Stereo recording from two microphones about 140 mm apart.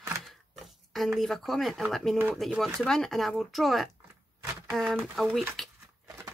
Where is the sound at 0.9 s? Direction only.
Centre (ahead or behind).